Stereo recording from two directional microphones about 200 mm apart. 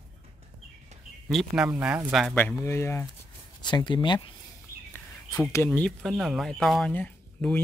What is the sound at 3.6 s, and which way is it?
Speech, 25° left (ahead or behind).